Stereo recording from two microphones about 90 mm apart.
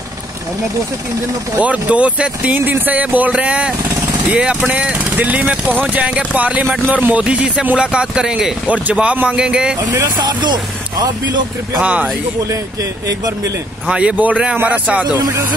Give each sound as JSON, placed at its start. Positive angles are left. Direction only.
{"t": 1.6, "sound": "speech", "side_deg": -15}
{"t": 10.1, "sound": "speech", "side_deg": -50}
{"t": 11.8, "sound": "speech", "side_deg": -15}
{"t": 13.8, "sound": "speech", "side_deg": -10}
{"t": 15.1, "sound": "speech", "side_deg": -40}